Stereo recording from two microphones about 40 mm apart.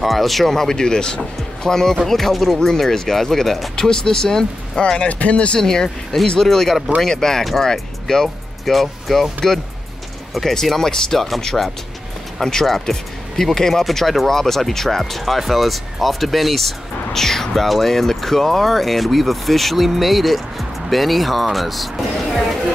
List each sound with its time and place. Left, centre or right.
0.0 s speech: centre
3.7 s speech: centre
5.6 s speech: centre
10.4 s speech: centre